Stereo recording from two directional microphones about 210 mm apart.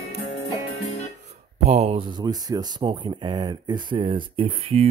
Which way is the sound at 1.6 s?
30° right (ahead or behind).